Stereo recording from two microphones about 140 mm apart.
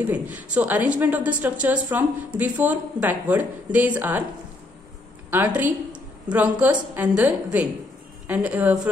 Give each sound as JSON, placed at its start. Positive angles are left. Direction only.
{"t": 0.0, "sound": "a woman's voice", "side_deg": -10}
{"t": 5.3, "sound": "a woman's voice", "side_deg": -15}
{"t": 5.9, "sound": "a sound", "side_deg": -30}
{"t": 6.6, "sound": "a woman's voice", "side_deg": -10}